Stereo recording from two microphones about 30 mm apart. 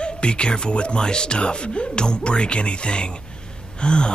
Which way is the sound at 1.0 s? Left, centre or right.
Left.